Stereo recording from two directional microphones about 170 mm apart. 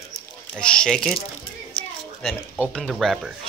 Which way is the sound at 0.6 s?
5° left (ahead or behind).